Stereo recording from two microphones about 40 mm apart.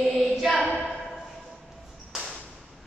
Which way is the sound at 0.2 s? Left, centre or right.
Centre.